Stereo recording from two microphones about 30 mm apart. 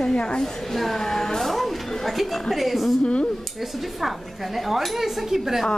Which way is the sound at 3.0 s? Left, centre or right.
Left.